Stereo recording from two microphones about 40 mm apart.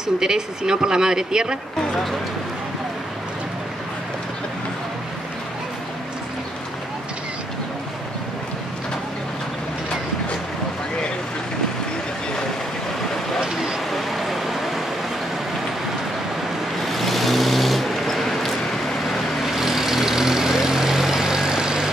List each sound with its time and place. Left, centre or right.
0.2 s speech: centre
13.4 s vehicle: centre
13.9 s vehicle: centre
16.8 s vehicle: centre